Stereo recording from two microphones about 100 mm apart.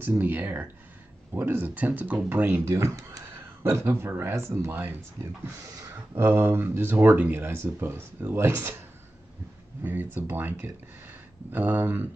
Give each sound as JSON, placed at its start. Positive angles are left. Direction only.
{"t": 0.2, "sound": "speech", "side_deg": -20}
{"t": 2.8, "sound": "speech", "side_deg": -30}
{"t": 9.8, "sound": "speech", "side_deg": -20}